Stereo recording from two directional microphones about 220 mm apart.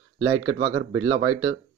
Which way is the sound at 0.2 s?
60° right (ahead or behind).